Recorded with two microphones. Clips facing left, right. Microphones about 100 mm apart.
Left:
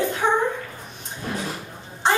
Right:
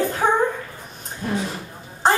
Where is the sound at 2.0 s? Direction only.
40° right (ahead or behind).